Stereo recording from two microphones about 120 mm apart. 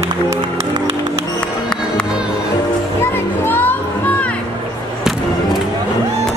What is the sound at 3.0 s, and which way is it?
Music, 20° left (ahead or behind).